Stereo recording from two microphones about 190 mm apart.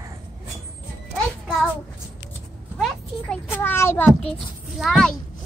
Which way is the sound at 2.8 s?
5° left (ahead or behind).